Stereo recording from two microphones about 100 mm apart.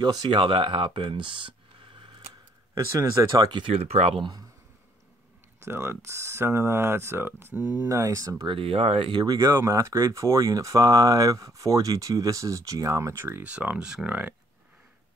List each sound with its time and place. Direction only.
0.0 s speech: 50° right (ahead or behind)
2.0 s scissors: 55° right (ahead or behind)
2.7 s speech: 30° right (ahead or behind)
3.6 s speech: 85° right
4.2 s speech: 45° right (ahead or behind)
5.6 s speech: 25° right (ahead or behind)
7.5 s speech: 40° left (ahead or behind)
7.9 s speech: 30° right (ahead or behind)
8.5 s speech: 70° right (ahead or behind)
9.1 s speech: 40° right (ahead or behind); by 13.5 s 25° right (ahead or behind)
13.5 s speech: 10° right (ahead or behind)